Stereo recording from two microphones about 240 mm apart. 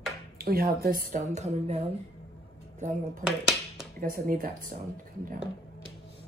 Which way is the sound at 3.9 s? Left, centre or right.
Right.